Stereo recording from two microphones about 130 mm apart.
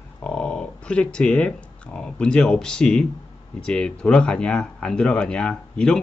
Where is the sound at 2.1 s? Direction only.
5° left (ahead or behind).